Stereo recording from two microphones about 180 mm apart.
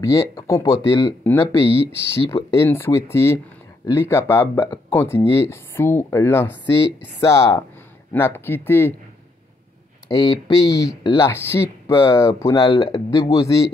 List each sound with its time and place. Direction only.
0.0 s speech: 20° left (ahead or behind)
10.0 s speech: 20° left (ahead or behind)